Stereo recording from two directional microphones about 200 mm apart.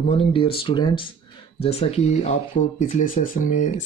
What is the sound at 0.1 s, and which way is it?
Speech, 30° left (ahead or behind).